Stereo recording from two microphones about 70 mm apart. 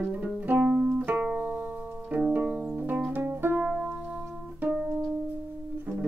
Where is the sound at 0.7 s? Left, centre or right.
Centre; by 3.6 s right.